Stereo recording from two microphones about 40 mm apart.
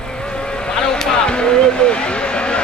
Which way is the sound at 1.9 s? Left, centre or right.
Left.